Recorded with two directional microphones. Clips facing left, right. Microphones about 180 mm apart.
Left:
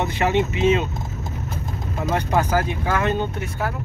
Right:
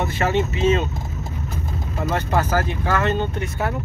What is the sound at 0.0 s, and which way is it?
Speech, 15° left (ahead or behind).